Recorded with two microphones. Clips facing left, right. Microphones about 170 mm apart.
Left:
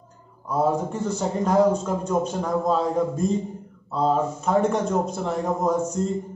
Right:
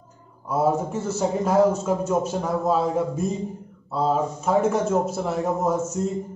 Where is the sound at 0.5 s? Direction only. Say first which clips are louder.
Right 1 dB; 5° right (ahead or behind).